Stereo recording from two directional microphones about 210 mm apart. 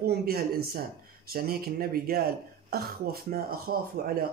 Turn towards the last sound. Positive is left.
turn(degrees=-45)  # may be behind; listen again after turning